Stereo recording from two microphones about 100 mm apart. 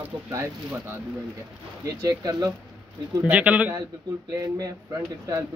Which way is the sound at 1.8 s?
35° right (ahead or behind).